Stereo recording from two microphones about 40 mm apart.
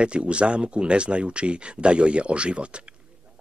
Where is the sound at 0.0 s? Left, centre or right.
Right.